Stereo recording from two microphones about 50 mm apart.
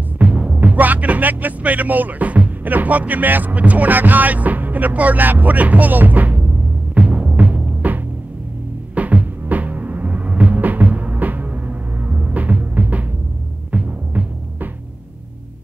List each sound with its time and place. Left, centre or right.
0.2 s speech: right
7.0 s music: right